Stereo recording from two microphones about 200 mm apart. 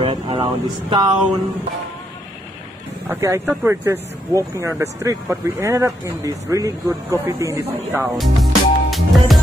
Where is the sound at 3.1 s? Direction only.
15° right (ahead or behind).